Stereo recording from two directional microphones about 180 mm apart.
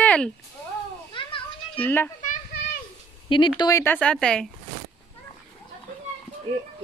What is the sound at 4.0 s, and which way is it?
Speech, 5° left (ahead or behind).